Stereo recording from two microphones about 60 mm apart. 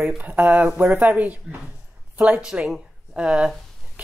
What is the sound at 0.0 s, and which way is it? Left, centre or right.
Speech, right.